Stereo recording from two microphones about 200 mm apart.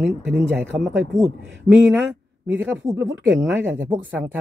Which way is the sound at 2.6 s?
10° right (ahead or behind).